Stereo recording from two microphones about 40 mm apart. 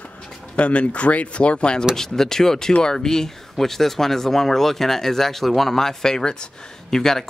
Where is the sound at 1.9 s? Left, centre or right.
Centre.